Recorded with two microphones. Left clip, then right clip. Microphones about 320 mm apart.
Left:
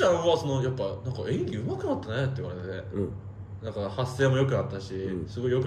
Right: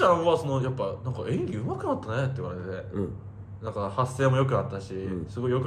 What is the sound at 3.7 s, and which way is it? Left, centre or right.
Speech, centre.